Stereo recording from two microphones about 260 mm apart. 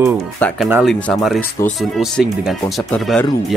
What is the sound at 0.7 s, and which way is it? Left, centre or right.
Speech, centre.